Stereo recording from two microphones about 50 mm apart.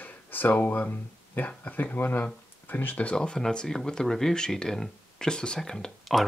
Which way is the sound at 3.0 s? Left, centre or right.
Left.